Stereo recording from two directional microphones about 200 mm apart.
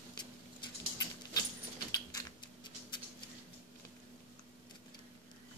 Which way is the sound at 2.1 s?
20° left (ahead or behind).